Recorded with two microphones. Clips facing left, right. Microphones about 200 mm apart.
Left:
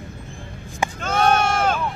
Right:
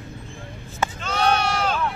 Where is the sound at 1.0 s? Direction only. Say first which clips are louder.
Left 3 dB; 50° left (ahead or behind).